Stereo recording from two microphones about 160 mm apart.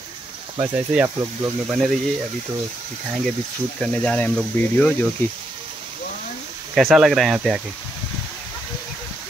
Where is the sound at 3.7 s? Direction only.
5° left (ahead or behind).